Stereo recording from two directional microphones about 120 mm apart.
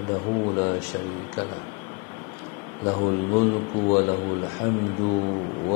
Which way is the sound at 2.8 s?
35° left (ahead or behind).